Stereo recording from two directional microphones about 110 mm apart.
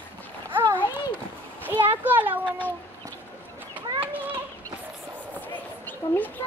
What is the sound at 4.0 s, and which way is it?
Children playing, 15° right (ahead or behind).